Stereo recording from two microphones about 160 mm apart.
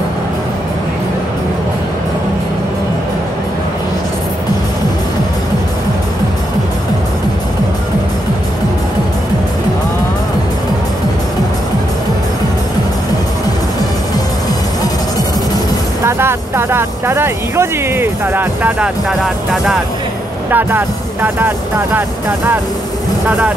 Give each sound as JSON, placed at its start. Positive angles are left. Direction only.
{"t": 16.0, "sound": "speech", "side_deg": -15}
{"t": 19.0, "sound": "speech", "side_deg": 0}
{"t": 20.5, "sound": "speech", "side_deg": -10}